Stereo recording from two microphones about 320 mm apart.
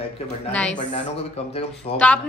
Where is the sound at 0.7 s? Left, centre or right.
Left.